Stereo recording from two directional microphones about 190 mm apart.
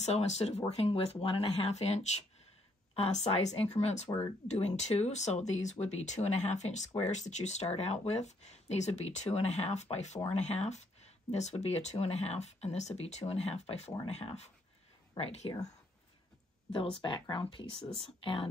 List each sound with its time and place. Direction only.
0.0 s speech: 35° left (ahead or behind)
2.9 s a sound: 35° left (ahead or behind)
3.3 s speech: 35° left (ahead or behind)
16.7 s speech: 25° left (ahead or behind)